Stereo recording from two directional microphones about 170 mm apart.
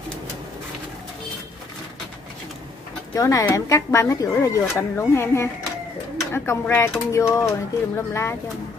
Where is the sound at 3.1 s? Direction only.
20° left (ahead or behind).